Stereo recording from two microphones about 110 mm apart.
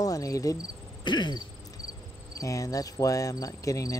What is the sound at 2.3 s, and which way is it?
Speech, 30° left (ahead or behind).